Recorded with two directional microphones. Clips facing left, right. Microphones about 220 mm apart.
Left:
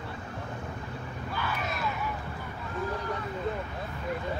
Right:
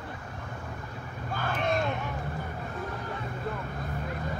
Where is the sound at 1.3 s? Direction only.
50° right (ahead or behind).